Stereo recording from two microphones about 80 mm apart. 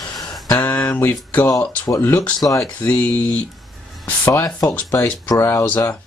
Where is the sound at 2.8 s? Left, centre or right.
Left.